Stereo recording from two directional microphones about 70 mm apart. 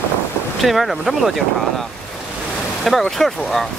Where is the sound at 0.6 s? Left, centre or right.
Centre.